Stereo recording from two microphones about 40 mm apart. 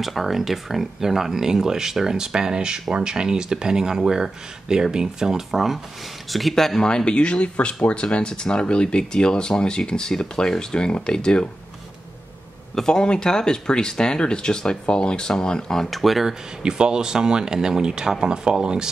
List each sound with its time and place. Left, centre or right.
0.0 s speech: centre
6.8 s speech: left
12.7 s speech: centre
15.9 s speech: centre
16.6 s speech: centre